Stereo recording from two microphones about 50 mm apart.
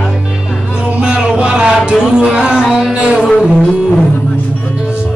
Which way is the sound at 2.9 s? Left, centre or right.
Centre.